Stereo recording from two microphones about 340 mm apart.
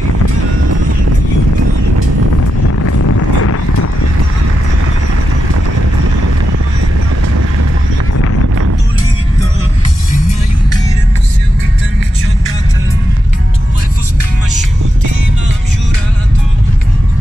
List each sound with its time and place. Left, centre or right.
3.1 s clip-clop: left